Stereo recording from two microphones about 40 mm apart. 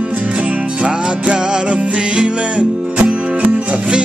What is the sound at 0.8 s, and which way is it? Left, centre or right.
Music, right.